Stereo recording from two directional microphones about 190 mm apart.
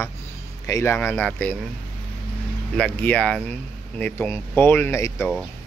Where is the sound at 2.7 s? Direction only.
10° left (ahead or behind).